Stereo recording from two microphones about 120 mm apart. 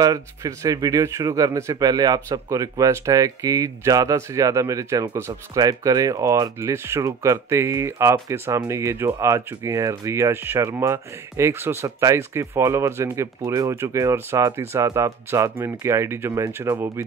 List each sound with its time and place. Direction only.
0.0 s speech: 25° right (ahead or behind)
16.7 s speech: 35° right (ahead or behind)